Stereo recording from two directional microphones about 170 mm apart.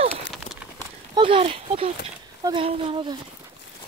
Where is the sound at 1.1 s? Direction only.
30° right (ahead or behind).